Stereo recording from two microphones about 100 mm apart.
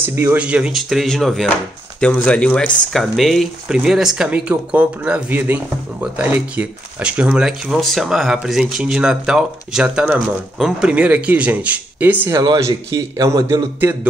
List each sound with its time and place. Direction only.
0.0 s speech: 20° right (ahead or behind)
0.4 s speech: 10° right (ahead or behind)
12.5 s a man's voice: 30° right (ahead or behind)